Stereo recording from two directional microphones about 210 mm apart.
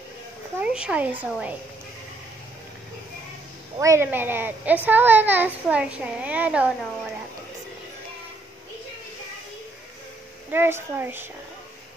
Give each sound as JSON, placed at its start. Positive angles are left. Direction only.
{"t": 0.6, "sound": "a child's voice", "side_deg": -5}
{"t": 3.7, "sound": "a child's voice", "side_deg": -15}
{"t": 10.5, "sound": "a child's voice", "side_deg": -10}